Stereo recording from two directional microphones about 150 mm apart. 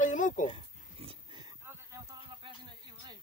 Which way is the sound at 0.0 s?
60° left (ahead or behind).